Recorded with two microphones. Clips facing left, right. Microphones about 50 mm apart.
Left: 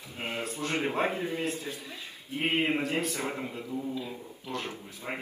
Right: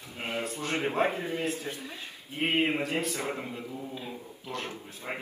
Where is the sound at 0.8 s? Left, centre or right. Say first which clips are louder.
Right 3 dB; centre.